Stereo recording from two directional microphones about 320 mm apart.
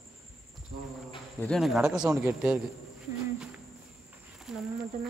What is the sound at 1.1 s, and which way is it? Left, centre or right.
Speech, centre.